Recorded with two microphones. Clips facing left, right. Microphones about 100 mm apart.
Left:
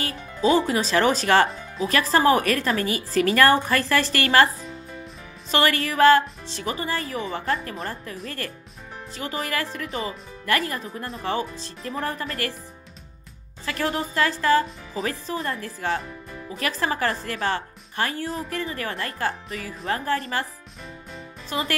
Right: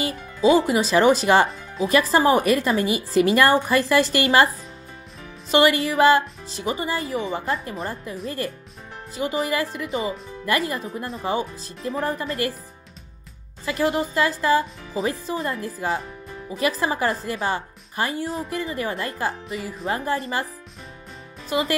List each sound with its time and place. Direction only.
0.4 s speech: 10° right (ahead or behind)
6.6 s speech: 20° right (ahead or behind)
6.9 s speech: 5° right (ahead or behind)
11.1 s speech: centre (ahead or behind)
13.7 s speech: 15° right (ahead or behind)